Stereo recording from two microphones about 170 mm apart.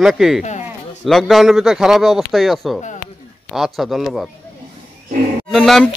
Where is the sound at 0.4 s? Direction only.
45° left (ahead or behind).